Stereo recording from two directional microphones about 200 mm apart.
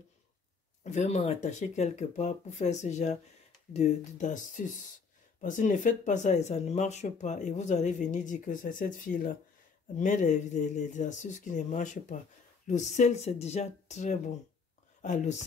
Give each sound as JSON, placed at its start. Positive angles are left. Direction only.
{"t": 0.8, "sound": "speech", "side_deg": 35}